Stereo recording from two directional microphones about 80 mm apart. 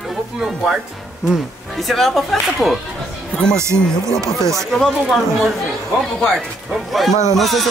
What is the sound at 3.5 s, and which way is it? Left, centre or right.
Speech, right.